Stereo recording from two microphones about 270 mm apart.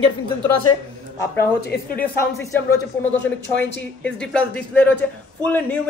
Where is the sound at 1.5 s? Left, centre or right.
Left.